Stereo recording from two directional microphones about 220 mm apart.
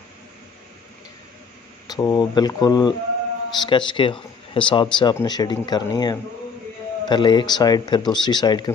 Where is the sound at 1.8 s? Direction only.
15° left (ahead or behind).